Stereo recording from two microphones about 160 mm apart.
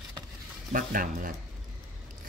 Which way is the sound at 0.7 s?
60° right (ahead or behind).